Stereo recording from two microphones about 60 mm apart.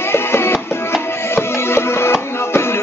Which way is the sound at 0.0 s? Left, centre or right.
Left.